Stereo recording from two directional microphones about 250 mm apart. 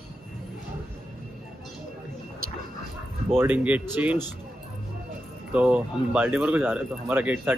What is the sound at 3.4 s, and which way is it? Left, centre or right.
Speech, centre.